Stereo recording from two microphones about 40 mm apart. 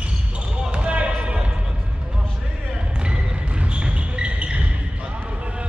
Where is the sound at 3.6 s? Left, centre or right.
Right.